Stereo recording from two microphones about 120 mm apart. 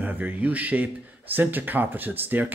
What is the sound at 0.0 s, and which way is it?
Speech, 15° right (ahead or behind).